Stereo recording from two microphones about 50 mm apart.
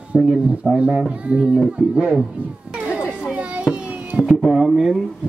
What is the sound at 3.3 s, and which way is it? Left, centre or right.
Children playing, right.